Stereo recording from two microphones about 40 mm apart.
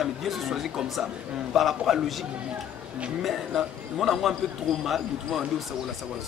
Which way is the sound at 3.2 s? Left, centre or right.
Centre.